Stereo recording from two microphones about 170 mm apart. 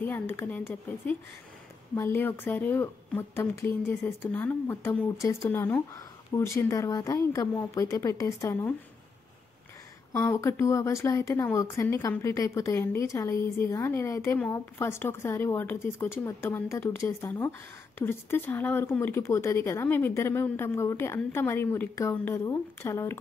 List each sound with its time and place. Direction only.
0.0 s speech: 10° left (ahead or behind)
10.1 s speech: 15° left (ahead or behind)